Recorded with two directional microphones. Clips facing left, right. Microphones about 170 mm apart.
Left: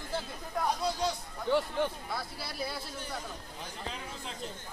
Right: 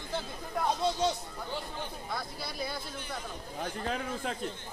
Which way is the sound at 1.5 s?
75° left (ahead or behind).